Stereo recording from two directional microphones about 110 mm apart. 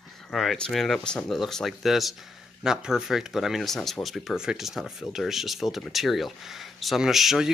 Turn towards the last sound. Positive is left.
turn(degrees=-5)  # may be behind; listen again after turning